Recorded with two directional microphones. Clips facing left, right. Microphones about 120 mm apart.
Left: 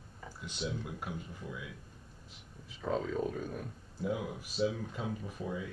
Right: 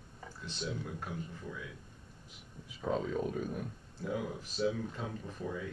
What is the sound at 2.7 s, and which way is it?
Speech, centre (ahead or behind).